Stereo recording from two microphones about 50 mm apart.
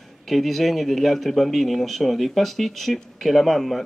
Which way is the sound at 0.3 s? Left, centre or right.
Centre.